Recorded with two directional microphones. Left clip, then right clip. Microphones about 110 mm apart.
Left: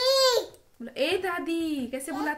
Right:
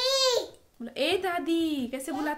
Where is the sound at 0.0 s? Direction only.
5° left (ahead or behind).